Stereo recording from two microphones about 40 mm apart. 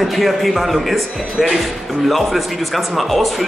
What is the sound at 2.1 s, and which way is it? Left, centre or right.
Speech, centre.